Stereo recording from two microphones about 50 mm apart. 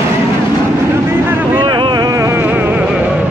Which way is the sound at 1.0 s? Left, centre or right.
Right.